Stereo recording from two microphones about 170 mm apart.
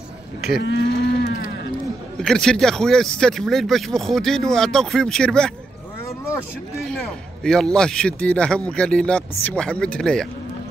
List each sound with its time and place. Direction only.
0.6 s cattle: 90° left
1.2 s a sound: 65° left (ahead or behind)
2.2 s speech: 5° left (ahead or behind)
7.4 s speech: 5° left (ahead or behind)